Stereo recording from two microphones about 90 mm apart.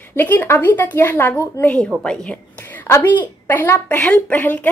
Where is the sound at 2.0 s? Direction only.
15° left (ahead or behind).